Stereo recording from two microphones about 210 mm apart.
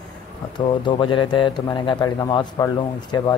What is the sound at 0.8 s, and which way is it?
Speech, 20° left (ahead or behind).